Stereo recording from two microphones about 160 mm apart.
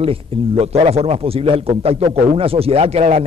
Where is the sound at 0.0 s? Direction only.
35° right (ahead or behind).